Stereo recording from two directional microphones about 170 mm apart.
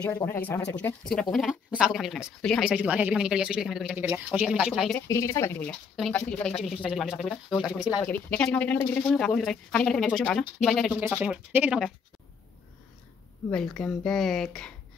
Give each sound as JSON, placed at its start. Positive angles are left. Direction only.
{"t": 0.0, "sound": "speech", "side_deg": 15}
{"t": 5.0, "sound": "speech", "side_deg": 15}
{"t": 11.0, "sound": "speech", "side_deg": -10}
{"t": 13.5, "sound": "speech", "side_deg": 5}